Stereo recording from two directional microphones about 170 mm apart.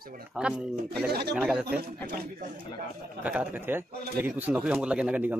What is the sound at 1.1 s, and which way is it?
Speech, 70° right (ahead or behind).